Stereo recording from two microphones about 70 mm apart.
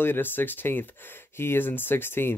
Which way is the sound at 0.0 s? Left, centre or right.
Left.